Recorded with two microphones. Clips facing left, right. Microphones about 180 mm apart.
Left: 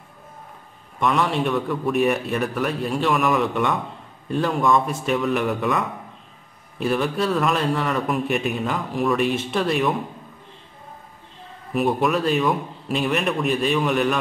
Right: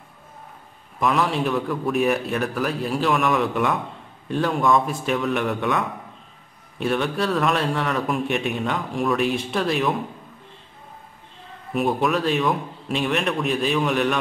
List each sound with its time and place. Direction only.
0.9 s a man's voice: centre (ahead or behind)
11.7 s a man's voice: centre (ahead or behind)